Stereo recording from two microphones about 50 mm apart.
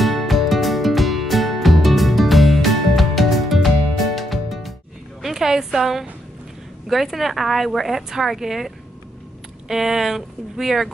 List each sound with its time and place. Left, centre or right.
0.0 s music: centre
5.2 s a sound: centre
6.9 s speech: centre